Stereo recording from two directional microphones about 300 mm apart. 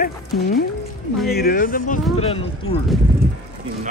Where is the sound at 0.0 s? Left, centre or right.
Left.